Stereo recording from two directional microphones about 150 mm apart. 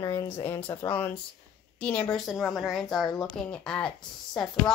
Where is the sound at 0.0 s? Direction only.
30° left (ahead or behind).